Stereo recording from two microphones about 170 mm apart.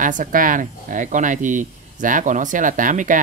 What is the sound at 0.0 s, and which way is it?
Speech, 50° right (ahead or behind).